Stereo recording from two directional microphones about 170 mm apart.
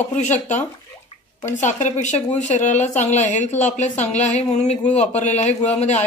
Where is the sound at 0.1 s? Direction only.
45° left (ahead or behind).